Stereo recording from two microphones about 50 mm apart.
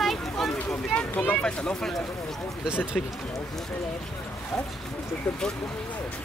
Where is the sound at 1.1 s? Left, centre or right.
Left.